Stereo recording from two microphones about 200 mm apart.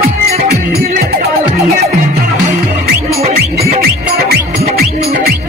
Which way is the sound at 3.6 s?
50° right (ahead or behind).